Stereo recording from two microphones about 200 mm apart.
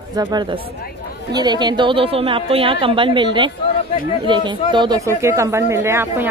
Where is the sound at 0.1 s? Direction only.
20° right (ahead or behind).